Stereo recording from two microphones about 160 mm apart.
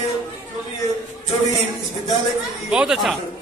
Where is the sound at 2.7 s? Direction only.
5° right (ahead or behind).